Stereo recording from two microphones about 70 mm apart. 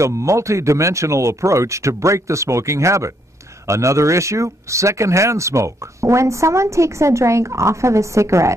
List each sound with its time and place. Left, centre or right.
0.0 s speech: right